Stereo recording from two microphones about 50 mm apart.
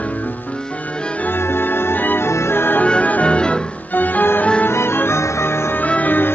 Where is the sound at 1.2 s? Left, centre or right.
Left.